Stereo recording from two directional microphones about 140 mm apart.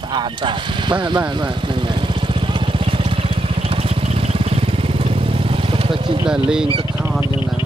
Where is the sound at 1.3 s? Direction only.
35° right (ahead or behind).